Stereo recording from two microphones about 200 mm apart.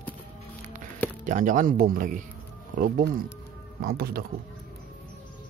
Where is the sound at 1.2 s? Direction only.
40° right (ahead or behind).